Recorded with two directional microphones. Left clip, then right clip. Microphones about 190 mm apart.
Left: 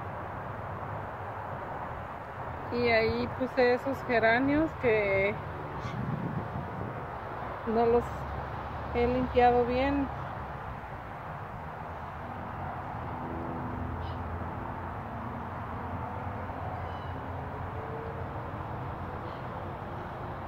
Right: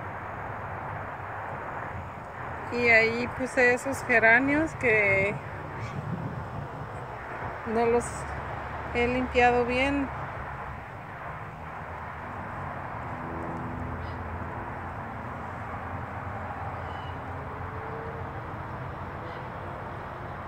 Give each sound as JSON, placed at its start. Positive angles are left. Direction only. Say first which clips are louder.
{"t": 2.7, "sound": "speech", "louder": "right 5 dB", "side_deg": -10}
{"t": 7.7, "sound": "speech", "louder": "right 1 dB", "side_deg": -5}